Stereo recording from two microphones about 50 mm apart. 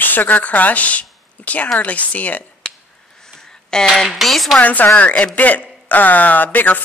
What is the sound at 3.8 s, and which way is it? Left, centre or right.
Speech, centre.